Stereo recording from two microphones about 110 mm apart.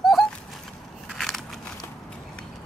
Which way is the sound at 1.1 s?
Centre (ahead or behind).